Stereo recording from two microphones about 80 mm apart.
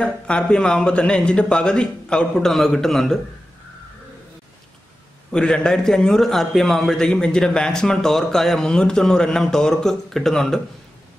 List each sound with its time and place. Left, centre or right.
0.0 s a man's voice: centre
5.3 s a man's voice: centre